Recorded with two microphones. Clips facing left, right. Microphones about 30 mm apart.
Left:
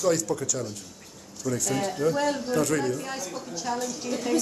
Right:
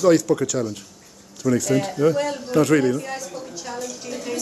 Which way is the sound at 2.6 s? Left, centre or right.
Right.